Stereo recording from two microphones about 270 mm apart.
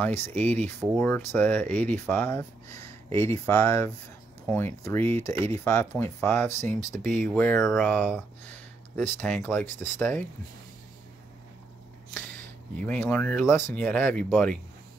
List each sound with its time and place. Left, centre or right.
0.3 s speech: centre
5.1 s speech: right
5.4 s speech: centre
12.8 s speech: centre